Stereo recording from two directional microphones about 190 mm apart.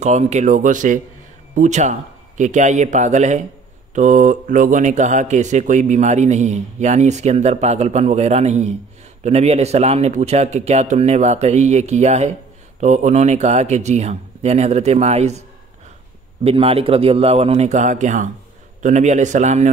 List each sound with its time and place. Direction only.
0.0 s speech: 35° right (ahead or behind)
16.4 s speech: 30° right (ahead or behind)